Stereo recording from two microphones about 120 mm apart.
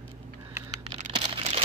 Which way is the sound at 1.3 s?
55° right (ahead or behind).